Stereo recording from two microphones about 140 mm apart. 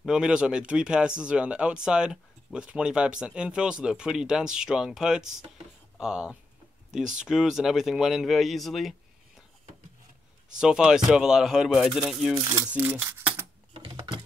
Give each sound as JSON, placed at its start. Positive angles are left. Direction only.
{"t": 0.0, "sound": "speech", "side_deg": -5}
{"t": 10.6, "sound": "speech", "side_deg": -5}
{"t": 12.6, "sound": "speech", "side_deg": -15}
{"t": 13.7, "sound": "typing", "side_deg": -40}